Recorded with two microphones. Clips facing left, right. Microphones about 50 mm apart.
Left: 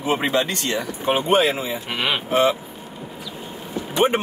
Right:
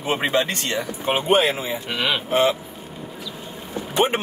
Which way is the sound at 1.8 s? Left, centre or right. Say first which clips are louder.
Right 1 dB; centre.